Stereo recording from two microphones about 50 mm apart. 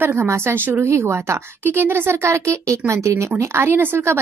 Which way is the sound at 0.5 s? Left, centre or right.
Right.